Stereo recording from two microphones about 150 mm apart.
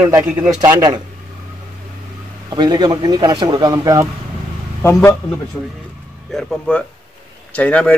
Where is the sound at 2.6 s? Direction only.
30° right (ahead or behind).